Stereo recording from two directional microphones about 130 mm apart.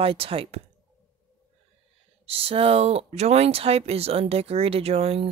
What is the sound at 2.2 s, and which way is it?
Speech, 45° right (ahead or behind).